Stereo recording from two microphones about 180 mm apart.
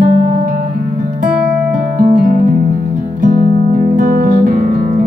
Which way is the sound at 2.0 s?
50° right (ahead or behind).